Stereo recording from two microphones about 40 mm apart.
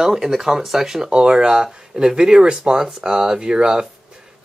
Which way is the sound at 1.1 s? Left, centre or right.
Right.